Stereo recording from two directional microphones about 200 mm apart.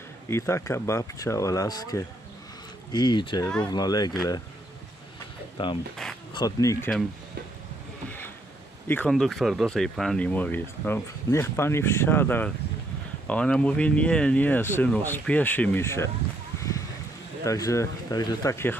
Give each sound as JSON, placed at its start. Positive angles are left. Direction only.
{"t": 0.3, "sound": "speech", "side_deg": 15}
{"t": 5.6, "sound": "speech", "side_deg": 25}
{"t": 8.8, "sound": "speech", "side_deg": 10}
{"t": 17.5, "sound": "speech", "side_deg": 15}